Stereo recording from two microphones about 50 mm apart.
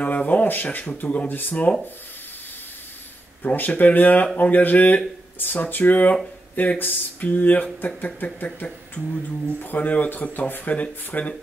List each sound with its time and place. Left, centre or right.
0.0 s speech: left
3.4 s speech: left
9.6 s speech: left